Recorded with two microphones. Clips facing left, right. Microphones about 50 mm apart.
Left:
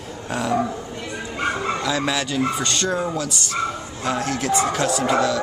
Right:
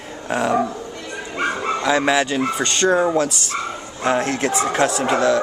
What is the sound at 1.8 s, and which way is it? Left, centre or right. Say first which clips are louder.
Speech: right 5 dB; right.